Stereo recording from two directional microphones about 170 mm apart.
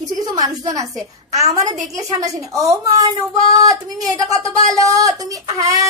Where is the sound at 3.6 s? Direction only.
20° right (ahead or behind).